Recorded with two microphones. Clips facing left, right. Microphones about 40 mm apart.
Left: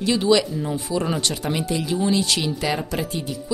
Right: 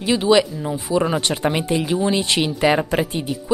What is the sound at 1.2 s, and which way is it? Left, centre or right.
Speech, right.